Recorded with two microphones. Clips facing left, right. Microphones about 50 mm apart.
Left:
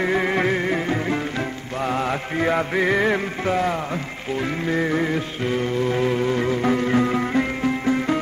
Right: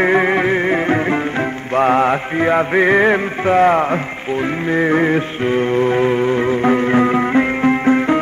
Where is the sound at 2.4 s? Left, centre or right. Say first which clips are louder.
Right 6 dB; right.